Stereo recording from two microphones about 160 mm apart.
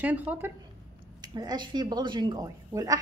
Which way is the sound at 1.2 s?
25° right (ahead or behind).